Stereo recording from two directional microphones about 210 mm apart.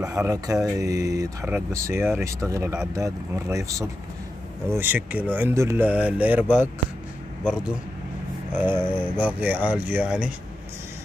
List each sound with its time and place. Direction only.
0.0 s speech: 15° right (ahead or behind)